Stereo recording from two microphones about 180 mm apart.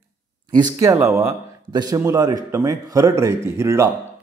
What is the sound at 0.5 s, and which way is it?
A man's voice, 20° right (ahead or behind).